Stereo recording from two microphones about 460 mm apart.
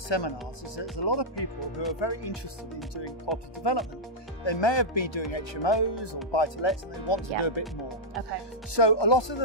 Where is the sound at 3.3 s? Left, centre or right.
Left.